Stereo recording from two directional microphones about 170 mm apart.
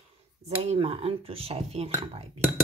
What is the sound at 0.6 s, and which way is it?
Speech, 35° right (ahead or behind).